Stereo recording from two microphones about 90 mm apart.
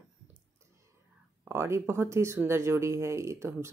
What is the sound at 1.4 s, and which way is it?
Speech, 25° right (ahead or behind).